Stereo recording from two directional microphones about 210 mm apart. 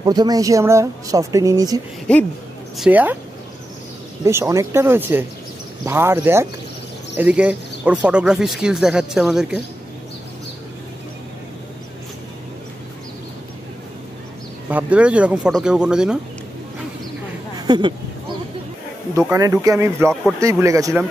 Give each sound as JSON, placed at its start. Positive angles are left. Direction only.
{"t": 0.0, "sound": "speech", "side_deg": -20}
{"t": 2.8, "sound": "speech", "side_deg": -10}
{"t": 4.2, "sound": "speech", "side_deg": -15}
{"t": 14.7, "sound": "speech", "side_deg": -5}
{"t": 17.6, "sound": "speech", "side_deg": -20}
{"t": 19.1, "sound": "speech", "side_deg": -15}